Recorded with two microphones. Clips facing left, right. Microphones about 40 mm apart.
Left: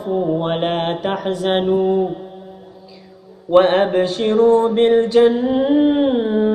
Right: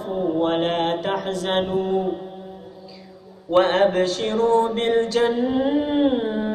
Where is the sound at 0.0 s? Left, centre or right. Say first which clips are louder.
Left 5 dB; centre.